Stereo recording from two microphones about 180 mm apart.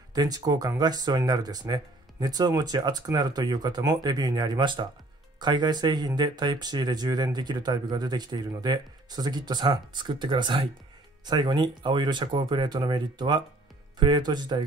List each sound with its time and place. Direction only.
0.1 s speech: 20° right (ahead or behind)